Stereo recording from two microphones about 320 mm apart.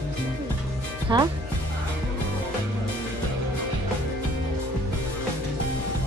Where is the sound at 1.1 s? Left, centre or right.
Centre.